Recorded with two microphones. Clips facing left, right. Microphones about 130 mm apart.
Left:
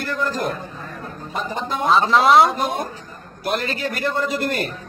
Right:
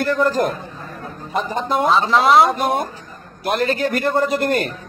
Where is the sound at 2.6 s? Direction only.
60° right (ahead or behind).